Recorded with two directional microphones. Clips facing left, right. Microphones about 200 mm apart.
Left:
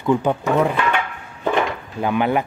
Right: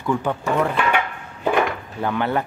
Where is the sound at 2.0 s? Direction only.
15° left (ahead or behind).